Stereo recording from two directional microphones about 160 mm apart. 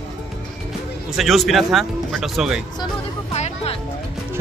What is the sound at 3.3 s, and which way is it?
Music, 45° left (ahead or behind).